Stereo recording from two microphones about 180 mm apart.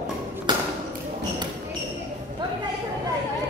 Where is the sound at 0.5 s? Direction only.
25° right (ahead or behind).